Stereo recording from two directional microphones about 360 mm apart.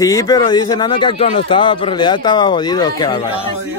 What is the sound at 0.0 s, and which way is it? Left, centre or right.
A man's voice, centre.